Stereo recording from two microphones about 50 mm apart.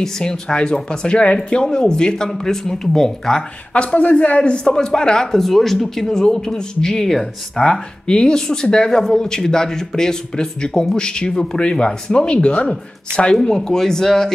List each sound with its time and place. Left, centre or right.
0.0 s speech: centre
3.7 s speech: left
13.4 s speech: centre